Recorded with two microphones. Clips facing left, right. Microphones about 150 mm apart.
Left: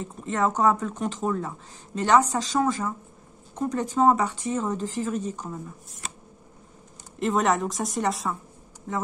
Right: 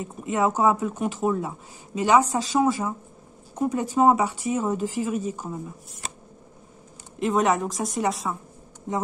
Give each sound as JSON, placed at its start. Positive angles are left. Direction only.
{"t": 0.0, "sound": "speech", "side_deg": -10}
{"t": 7.2, "sound": "speech", "side_deg": 0}
{"t": 8.9, "sound": "speech", "side_deg": -20}